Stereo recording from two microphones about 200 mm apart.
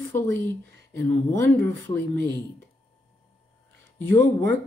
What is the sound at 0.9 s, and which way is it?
Speech, 10° left (ahead or behind).